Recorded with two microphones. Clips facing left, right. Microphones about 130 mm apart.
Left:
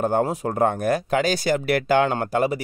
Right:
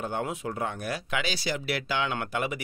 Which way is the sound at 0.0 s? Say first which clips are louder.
Left 10 dB; 45° left (ahead or behind).